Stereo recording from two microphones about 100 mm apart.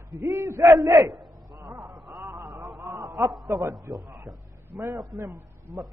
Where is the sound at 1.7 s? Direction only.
5° right (ahead or behind).